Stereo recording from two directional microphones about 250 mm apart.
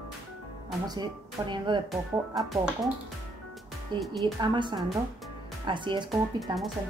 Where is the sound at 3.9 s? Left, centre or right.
Centre.